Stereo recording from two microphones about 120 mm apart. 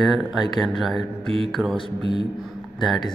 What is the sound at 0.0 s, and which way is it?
Speech, centre (ahead or behind).